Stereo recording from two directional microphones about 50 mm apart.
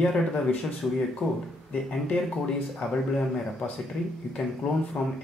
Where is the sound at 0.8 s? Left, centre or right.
Centre.